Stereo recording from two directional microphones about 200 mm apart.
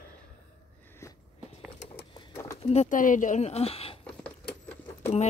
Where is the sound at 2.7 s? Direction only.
35° left (ahead or behind).